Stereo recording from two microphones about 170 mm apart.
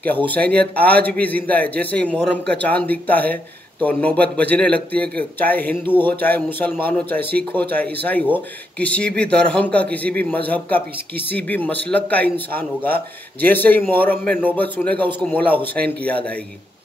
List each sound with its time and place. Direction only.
0.3 s a man's voice: 10° left (ahead or behind)
11.3 s a man's voice: 10° left (ahead or behind)
15.7 s a man's voice: 65° right (ahead or behind)
16.1 s a man's voice: 10° left (ahead or behind)